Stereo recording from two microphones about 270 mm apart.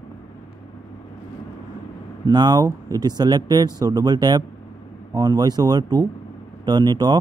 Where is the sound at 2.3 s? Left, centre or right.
Centre.